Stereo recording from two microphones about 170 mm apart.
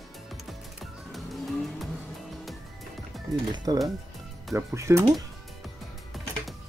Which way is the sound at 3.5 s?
25° right (ahead or behind).